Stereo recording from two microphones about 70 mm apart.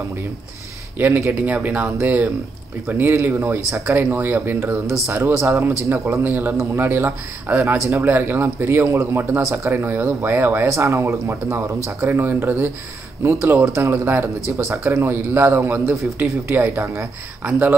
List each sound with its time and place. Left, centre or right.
0.9 s speech: right
4.6 s a man's voice: right
6.2 s a man's voice: right
9.7 s a man's voice: right
10.7 s speech: right
13.2 s a man's voice: right
14.5 s a man's voice: right
16.7 s speech: right
17.4 s speech: right